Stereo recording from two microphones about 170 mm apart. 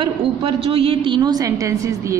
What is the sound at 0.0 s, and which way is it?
A woman's voice, 30° right (ahead or behind).